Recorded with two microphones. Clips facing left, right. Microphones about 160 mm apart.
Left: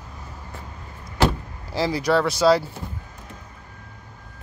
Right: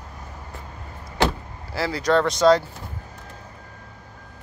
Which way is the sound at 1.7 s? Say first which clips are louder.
Even; 15° left (ahead or behind).